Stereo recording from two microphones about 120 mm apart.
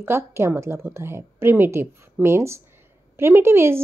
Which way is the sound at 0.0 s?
20° right (ahead or behind).